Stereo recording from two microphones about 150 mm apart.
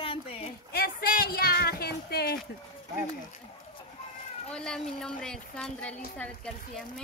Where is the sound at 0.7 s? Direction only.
85° left.